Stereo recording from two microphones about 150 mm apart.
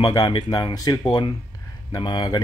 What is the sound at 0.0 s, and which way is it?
Speech, 25° left (ahead or behind).